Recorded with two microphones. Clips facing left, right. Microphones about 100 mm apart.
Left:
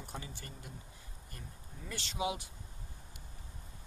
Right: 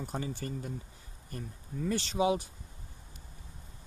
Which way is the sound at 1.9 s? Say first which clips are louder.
Right 9 dB; 40° right (ahead or behind).